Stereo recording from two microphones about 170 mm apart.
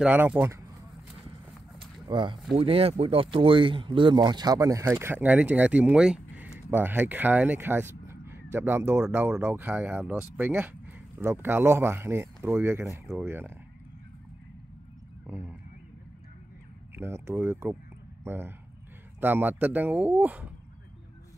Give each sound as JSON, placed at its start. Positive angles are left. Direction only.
{"t": 0.0, "sound": "speech", "side_deg": -10}
{"t": 2.0, "sound": "speech", "side_deg": -25}
{"t": 15.2, "sound": "speech", "side_deg": -10}
{"t": 16.9, "sound": "speech", "side_deg": -15}